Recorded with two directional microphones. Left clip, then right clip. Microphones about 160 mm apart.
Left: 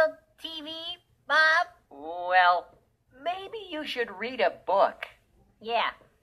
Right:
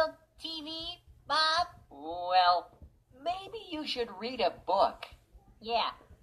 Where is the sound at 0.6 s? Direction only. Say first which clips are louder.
Left 5 dB; 55° left (ahead or behind).